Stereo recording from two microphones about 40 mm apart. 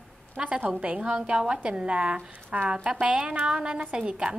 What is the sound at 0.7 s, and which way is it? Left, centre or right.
A woman's voice, right.